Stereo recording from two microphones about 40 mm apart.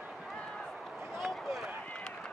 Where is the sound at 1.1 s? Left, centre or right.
Centre.